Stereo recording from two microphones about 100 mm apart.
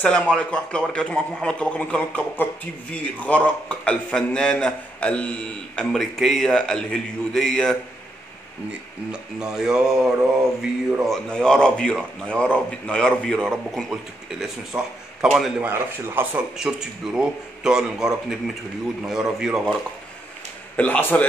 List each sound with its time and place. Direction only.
0.0 s a man's voice: 10° left (ahead or behind)
5.9 s a man's voice: centre (ahead or behind)
9.1 s a man's voice: 5° right (ahead or behind)
11.2 s a man's voice: 10° left (ahead or behind)
14.7 s a man's voice: 15° right (ahead or behind)
15.2 s a man's voice: 5° right (ahead or behind)
15.6 s speech: 20° right (ahead or behind)
16.5 s a man's voice: 5° right (ahead or behind)
20.7 s a man's voice: 15° left (ahead or behind)